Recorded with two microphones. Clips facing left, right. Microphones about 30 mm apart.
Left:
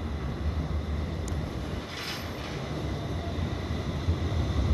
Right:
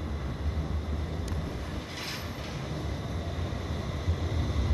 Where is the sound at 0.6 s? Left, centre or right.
Centre.